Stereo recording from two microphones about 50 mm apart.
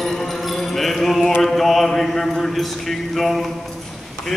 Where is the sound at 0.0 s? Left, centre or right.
Centre.